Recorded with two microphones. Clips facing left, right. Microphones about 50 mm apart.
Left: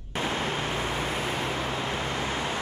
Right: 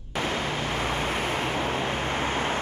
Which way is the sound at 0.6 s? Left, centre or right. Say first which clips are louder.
Right 2 dB; right.